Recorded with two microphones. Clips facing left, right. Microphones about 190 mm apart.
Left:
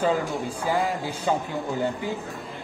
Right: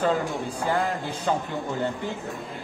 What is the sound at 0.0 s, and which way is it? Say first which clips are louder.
A man's voice: even; centre (ahead or behind).